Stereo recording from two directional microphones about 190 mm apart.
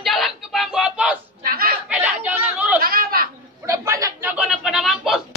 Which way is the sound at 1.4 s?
50° right (ahead or behind).